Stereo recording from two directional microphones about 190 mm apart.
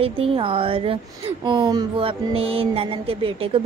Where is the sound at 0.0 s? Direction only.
30° right (ahead or behind).